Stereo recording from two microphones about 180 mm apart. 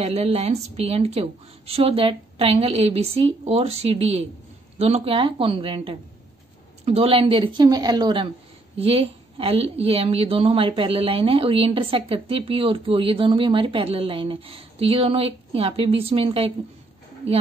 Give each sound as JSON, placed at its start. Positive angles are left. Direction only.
{"t": 0.0, "sound": "a woman's voice", "side_deg": -35}